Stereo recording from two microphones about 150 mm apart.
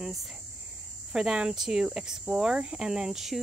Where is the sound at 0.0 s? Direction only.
Centre (ahead or behind).